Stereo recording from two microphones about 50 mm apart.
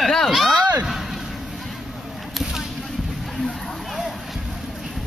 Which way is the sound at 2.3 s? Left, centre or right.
Centre.